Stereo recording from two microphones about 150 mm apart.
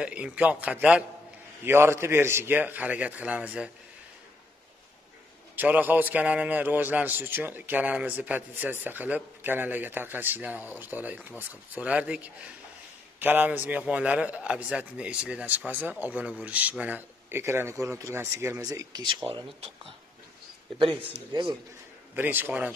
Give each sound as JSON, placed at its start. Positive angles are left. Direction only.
{"t": 0.0, "sound": "a man's voice", "side_deg": -5}
{"t": 5.6, "sound": "a man's voice", "side_deg": -10}
{"t": 21.3, "sound": "speech", "side_deg": -30}
{"t": 22.1, "sound": "a man's voice", "side_deg": -15}